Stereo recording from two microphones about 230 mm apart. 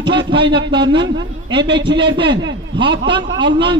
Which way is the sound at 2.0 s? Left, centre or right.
Right.